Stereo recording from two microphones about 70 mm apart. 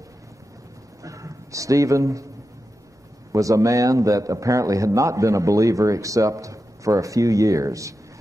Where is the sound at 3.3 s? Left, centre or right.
Right.